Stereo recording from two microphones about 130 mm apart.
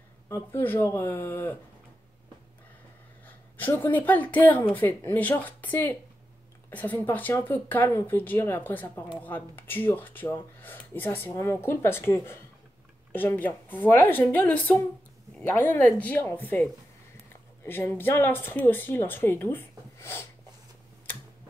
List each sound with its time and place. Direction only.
0.3 s speech: 15° left (ahead or behind)
3.3 s speech: 15° left (ahead or behind)
17.6 s speech: 15° left (ahead or behind)